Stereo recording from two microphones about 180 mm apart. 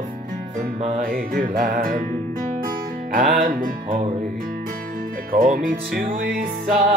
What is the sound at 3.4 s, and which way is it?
Music, 50° right (ahead or behind).